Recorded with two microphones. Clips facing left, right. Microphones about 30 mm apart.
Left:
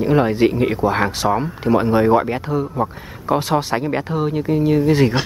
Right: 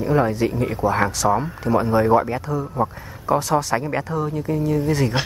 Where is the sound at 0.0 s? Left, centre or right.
Left.